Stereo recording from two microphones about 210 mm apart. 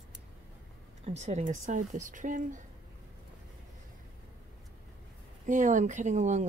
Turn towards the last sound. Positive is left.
turn(degrees=-35)  # may be behind; listen again after turning